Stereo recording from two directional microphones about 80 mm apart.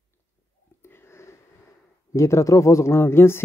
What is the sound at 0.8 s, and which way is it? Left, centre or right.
Sniff, left.